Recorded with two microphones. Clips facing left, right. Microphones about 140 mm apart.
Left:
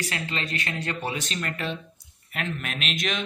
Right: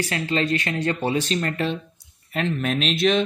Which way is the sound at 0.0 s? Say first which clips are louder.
Right 8 dB; 30° right (ahead or behind).